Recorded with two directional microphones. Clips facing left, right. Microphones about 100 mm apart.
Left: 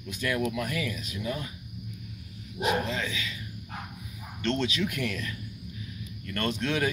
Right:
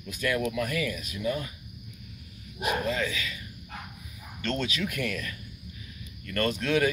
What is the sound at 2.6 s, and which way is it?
Speech, 25° left (ahead or behind).